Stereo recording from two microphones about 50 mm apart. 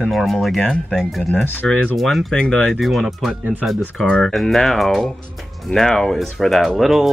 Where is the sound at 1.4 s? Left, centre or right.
Left.